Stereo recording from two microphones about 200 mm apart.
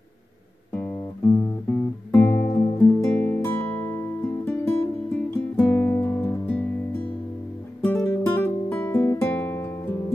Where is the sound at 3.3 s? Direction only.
10° left (ahead or behind).